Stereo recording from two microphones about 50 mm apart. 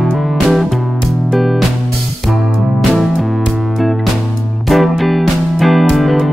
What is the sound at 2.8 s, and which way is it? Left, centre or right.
Music, centre.